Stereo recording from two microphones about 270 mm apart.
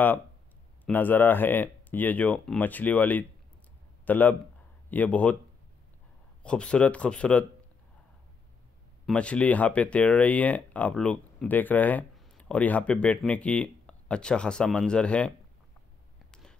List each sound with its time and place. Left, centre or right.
0.8 s a man's voice: centre
6.4 s speech: centre
9.0 s speech: centre